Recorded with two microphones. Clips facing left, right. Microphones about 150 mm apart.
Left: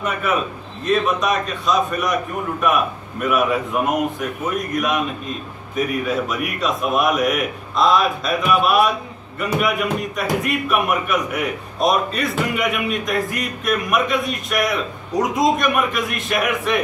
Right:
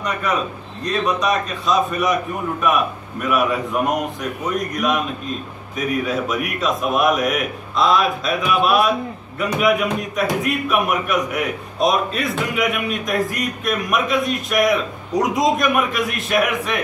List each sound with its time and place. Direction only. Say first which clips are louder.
0.8 s a man's voice: left 1 dB; centre (ahead or behind)